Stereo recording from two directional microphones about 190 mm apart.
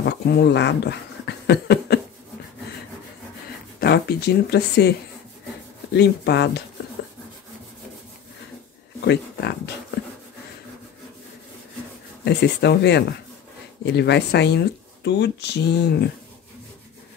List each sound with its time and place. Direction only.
0.0 s speech: 60° left (ahead or behind)
3.8 s speech: 55° left (ahead or behind)
5.9 s speech: 60° left (ahead or behind)
9.0 s speech: 60° left (ahead or behind)
12.3 s speech: 60° left (ahead or behind)